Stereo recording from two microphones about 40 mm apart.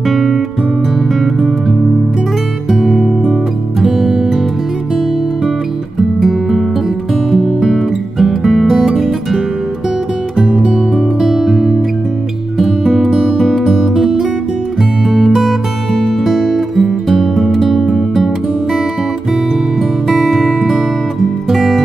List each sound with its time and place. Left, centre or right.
0.1 s music: centre
2.7 s music: centre
7.2 s music: centre
7.6 s music: centre
10.5 s music: centre
13.4 s music: centre
15.0 s guitar: centre
17.6 s music: centre
20.1 s music: centre
21.5 s music: centre